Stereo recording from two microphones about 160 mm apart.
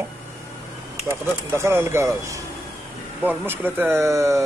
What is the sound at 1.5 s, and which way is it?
Speech, 15° right (ahead or behind).